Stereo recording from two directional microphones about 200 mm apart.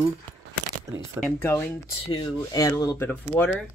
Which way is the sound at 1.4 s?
10° left (ahead or behind).